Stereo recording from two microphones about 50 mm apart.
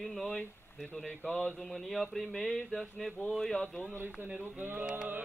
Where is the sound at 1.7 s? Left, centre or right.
Centre.